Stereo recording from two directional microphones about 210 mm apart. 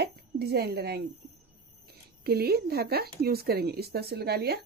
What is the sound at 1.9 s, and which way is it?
Speech, 50° right (ahead or behind).